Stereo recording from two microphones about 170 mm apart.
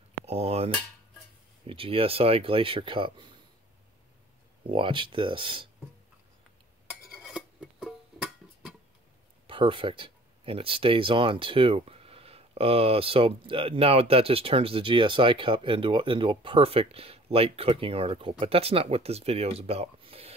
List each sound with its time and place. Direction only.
0.2 s cutlery: 40° right (ahead or behind)
1.7 s speech: 30° right (ahead or behind)
4.6 s speech: 30° right (ahead or behind)
7.2 s music: 5° right (ahead or behind)
9.5 s speech: 30° right (ahead or behind)